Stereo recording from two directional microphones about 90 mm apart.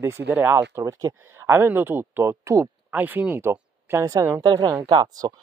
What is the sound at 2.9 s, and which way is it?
Speech, 20° right (ahead or behind).